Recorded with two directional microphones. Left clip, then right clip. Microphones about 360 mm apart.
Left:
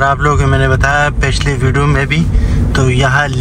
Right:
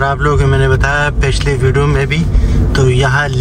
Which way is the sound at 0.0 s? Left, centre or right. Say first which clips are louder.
Left 2 dB; centre.